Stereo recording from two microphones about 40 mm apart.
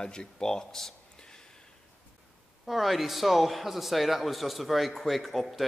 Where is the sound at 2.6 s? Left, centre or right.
Centre.